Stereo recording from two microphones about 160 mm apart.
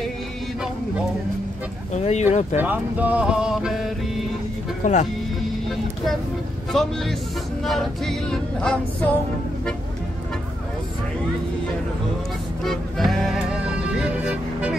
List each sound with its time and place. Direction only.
2.0 s speech: 45° left (ahead or behind)
2.5 s music: 10° right (ahead or behind)
4.8 s speech: 50° left (ahead or behind)
6.7 s female singing: centre (ahead or behind)
12.6 s music: centre (ahead or behind)